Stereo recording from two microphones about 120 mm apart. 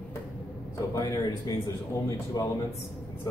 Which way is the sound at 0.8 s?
25° left (ahead or behind).